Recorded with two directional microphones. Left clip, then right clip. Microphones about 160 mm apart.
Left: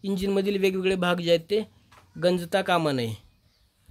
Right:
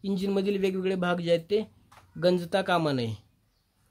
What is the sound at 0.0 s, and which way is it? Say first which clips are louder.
Speech: left 3 dB; 10° left (ahead or behind).